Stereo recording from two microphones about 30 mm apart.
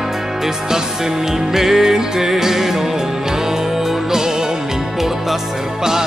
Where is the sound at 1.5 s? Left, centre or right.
Centre.